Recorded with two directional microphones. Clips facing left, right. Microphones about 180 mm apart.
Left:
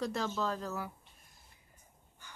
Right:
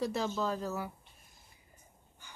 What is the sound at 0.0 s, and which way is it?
Speech, 5° right (ahead or behind).